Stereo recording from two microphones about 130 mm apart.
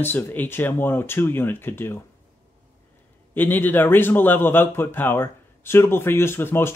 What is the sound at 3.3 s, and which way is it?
A man's voice, 15° left (ahead or behind).